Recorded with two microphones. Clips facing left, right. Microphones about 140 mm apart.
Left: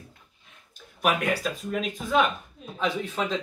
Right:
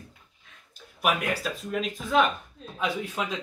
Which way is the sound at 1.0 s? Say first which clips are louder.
Left 2 dB; centre (ahead or behind).